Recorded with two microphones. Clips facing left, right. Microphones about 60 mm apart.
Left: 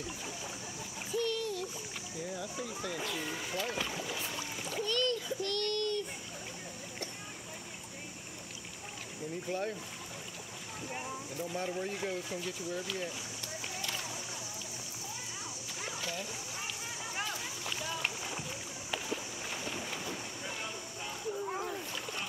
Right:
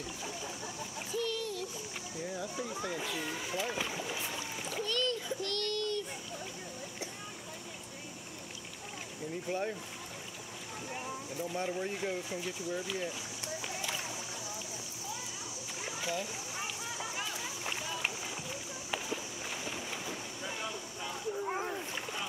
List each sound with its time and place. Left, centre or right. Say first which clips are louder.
1.1 s splash: left 2 dB; centre
2.2 s a sound: right 2 dB; centre
3.0 s rowboat: even; centre
9.5 s speech: right 1 dB; centre
10.9 s speech: even; centre
13.7 s a sound: right 1 dB; centre
15.8 s a sound: right 3 dB; centre
17.0 s run: left 2 dB; centre
21.5 s splash: right 1 dB; right